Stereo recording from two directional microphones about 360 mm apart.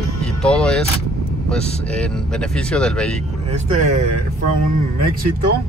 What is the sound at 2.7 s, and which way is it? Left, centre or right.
Speech, centre.